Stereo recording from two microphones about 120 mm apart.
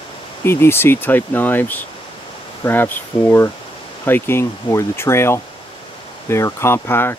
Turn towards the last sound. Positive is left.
turn(degrees=20)  # may be behind; listen again after turning